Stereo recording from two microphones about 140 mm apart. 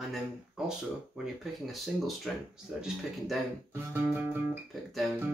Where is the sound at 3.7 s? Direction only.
15° right (ahead or behind).